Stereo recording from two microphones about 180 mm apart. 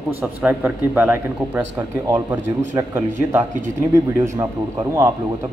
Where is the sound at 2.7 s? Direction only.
10° right (ahead or behind).